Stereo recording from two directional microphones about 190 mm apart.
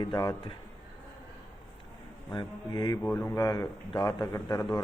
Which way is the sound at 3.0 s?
10° left (ahead or behind).